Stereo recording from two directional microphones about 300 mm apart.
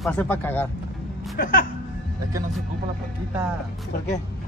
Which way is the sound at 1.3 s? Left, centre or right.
Left.